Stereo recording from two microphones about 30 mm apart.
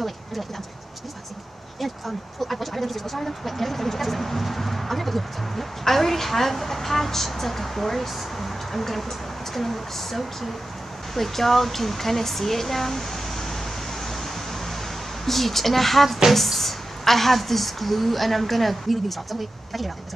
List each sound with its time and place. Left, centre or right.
0.0 s a sound: centre
1.8 s speech: centre
15.2 s speech: centre